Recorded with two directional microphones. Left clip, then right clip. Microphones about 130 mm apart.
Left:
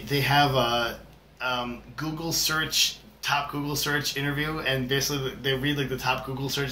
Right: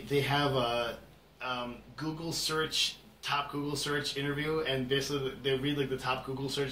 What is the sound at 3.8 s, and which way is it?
Speech, 15° left (ahead or behind).